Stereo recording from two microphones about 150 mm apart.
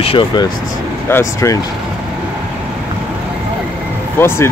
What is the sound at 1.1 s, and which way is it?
Speech, 20° left (ahead or behind).